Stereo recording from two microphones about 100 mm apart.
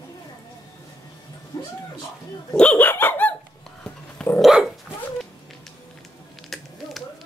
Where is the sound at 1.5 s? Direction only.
40° left (ahead or behind).